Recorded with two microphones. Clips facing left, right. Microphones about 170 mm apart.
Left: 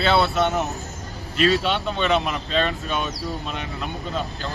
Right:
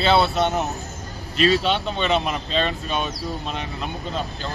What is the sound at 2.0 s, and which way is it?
Speech, 20° right (ahead or behind).